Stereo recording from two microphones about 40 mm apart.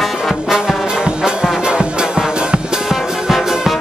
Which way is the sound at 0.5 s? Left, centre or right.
Centre.